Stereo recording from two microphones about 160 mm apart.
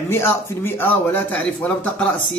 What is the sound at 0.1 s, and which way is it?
Speech, 15° left (ahead or behind).